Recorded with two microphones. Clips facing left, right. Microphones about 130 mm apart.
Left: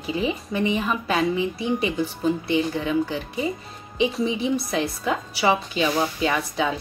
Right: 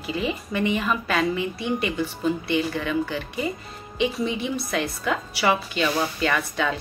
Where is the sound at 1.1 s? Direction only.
25° left (ahead or behind).